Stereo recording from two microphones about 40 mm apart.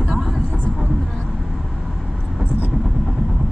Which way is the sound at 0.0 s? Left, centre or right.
Centre.